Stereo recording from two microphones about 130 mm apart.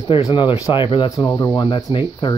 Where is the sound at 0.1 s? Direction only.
40° left (ahead or behind).